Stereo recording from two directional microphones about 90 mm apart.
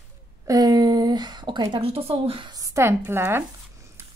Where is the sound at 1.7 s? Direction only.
90° right.